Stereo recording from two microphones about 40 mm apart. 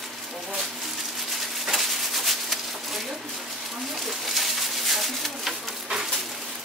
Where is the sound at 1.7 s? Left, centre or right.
Centre.